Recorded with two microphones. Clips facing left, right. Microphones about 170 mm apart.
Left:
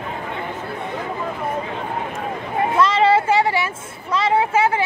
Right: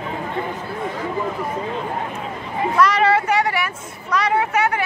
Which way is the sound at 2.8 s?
25° left (ahead or behind).